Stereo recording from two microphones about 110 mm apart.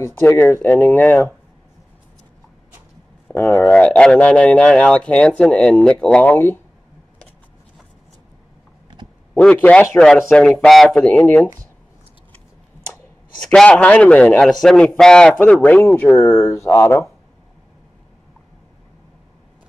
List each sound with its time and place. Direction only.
0.0 s speech: 25° left (ahead or behind)
3.3 s speech: 15° left (ahead or behind)
9.4 s speech: 10° left (ahead or behind)
11.1 s speech: 15° left (ahead or behind)
13.4 s speech: 10° left (ahead or behind)